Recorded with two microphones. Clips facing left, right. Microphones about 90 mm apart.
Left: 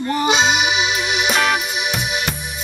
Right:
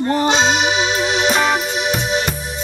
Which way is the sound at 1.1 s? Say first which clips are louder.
Right 1 dB; 5° left (ahead or behind).